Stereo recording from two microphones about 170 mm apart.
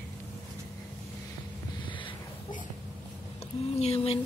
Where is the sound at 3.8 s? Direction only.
35° left (ahead or behind).